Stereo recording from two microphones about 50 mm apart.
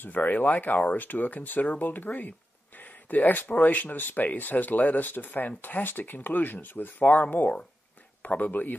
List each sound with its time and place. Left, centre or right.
0.0 s speech: left